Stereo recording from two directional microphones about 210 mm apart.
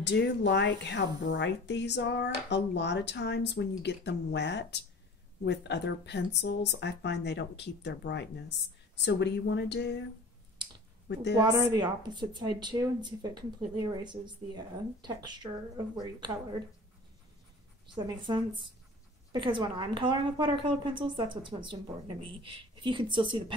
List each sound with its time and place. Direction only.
0.0 s speech: 55° left (ahead or behind)
11.3 s a woman's voice: 20° right (ahead or behind)
17.8 s a woman's voice: 20° right (ahead or behind)